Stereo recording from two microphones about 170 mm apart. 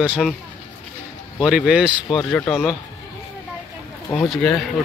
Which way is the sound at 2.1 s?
10° left (ahead or behind).